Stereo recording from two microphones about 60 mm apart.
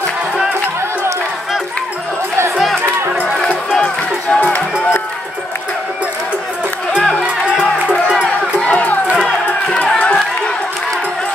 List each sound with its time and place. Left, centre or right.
3.7 s music: centre
8.5 s music: left
9.8 s run: centre